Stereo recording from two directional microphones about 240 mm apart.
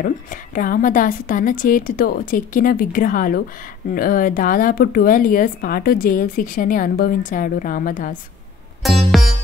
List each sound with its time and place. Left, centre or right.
0.0 s speech: left
8.8 s music: centre